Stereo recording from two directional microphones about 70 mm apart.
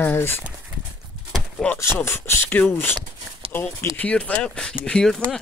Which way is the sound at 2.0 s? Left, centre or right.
Left.